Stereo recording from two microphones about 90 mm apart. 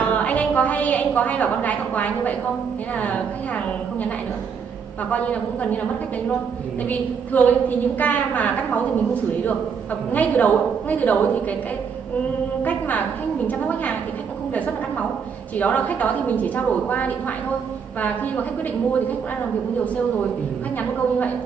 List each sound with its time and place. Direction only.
0.1 s a woman's voice: 15° left (ahead or behind)
5.1 s a woman's voice: 15° left (ahead or behind)
6.9 s a woman's voice: 20° left (ahead or behind)
12.6 s a woman's voice: 20° left (ahead or behind)
15.5 s a woman's voice: 15° left (ahead or behind)